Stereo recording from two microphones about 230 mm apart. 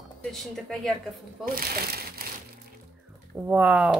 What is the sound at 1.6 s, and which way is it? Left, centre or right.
Speech, right.